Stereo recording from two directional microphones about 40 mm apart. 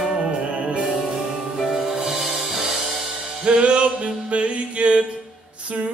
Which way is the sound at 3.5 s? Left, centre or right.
Right.